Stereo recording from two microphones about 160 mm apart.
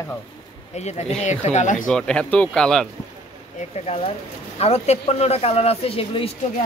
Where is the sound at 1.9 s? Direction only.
5° left (ahead or behind).